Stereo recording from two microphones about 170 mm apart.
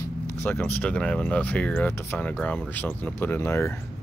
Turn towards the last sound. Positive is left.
turn(degrees=15)  # may be behind; listen again after turning